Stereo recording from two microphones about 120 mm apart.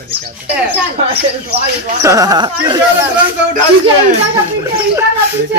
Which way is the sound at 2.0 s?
30° right (ahead or behind).